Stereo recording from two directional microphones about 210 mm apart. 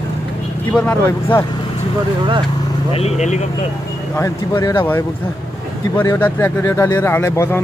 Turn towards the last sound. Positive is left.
turn(degrees=10)  # may be behind; listen again after turning